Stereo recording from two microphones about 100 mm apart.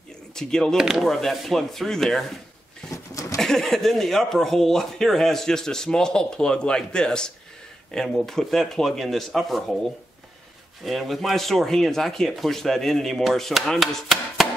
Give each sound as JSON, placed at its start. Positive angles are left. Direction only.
{"t": 0.3, "sound": "speech", "side_deg": 5}
{"t": 0.7, "sound": "speech", "side_deg": -5}
{"t": 2.9, "sound": "goat", "side_deg": 35}
{"t": 3.3, "sound": "speech", "side_deg": 5}
{"t": 10.9, "sound": "speech", "side_deg": 0}